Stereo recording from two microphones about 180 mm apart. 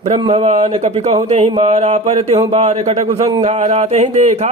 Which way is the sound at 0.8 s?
35° right (ahead or behind).